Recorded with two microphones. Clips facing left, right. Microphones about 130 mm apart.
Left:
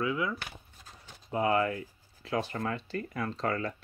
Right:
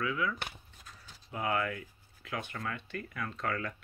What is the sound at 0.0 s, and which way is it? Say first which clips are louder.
Speech: left 2 dB; 25° left (ahead or behind).